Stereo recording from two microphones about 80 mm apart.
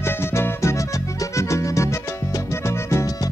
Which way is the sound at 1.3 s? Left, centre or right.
Left.